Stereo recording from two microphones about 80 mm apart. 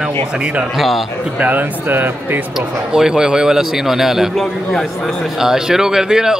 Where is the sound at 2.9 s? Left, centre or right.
Centre.